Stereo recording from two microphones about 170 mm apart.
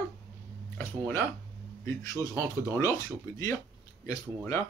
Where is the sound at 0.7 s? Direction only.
15° left (ahead or behind).